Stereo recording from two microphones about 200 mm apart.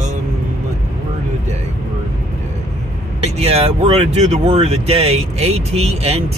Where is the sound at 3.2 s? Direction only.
30° right (ahead or behind).